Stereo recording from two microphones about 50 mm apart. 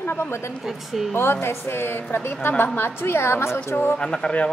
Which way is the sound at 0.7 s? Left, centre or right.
Centre.